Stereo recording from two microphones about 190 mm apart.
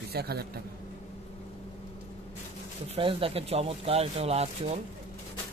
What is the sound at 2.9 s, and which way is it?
Speech, 30° right (ahead or behind).